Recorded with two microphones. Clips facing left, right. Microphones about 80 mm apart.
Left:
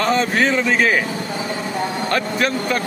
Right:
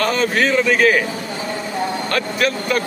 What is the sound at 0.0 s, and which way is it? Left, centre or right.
A man's voice, left.